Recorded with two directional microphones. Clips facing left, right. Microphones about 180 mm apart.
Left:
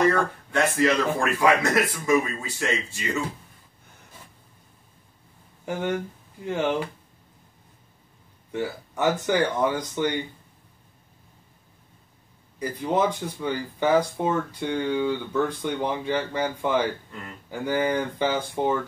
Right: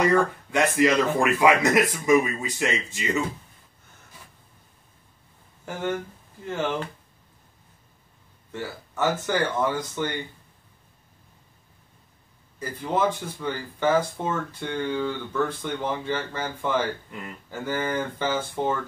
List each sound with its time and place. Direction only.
0.0 s a man's voice: 15° right (ahead or behind)
5.7 s speech: 15° left (ahead or behind)
8.5 s speech: 15° left (ahead or behind)
12.5 s speech: 15° left (ahead or behind)